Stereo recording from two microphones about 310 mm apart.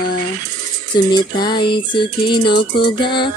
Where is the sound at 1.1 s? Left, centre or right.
Centre.